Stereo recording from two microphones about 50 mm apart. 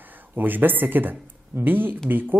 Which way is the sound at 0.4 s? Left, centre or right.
Right.